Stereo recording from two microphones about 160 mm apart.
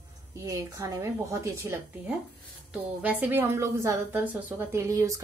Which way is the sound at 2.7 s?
10° right (ahead or behind).